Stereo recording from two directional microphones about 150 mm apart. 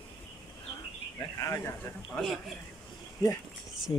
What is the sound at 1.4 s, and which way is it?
Speech, 20° left (ahead or behind).